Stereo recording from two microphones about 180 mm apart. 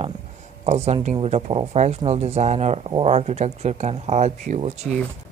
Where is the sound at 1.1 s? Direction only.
35° right (ahead or behind).